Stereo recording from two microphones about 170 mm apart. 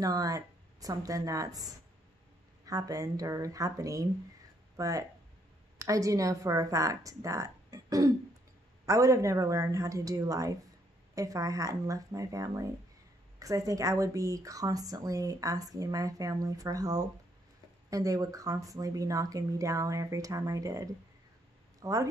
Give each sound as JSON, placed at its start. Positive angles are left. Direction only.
{"t": 0.0, "sound": "a woman's voice", "side_deg": -20}